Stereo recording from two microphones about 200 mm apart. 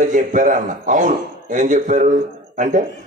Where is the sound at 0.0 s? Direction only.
40° right (ahead or behind).